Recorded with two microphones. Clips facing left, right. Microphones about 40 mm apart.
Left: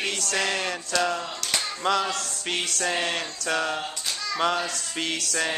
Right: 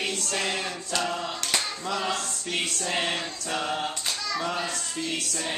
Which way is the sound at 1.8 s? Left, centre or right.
Left.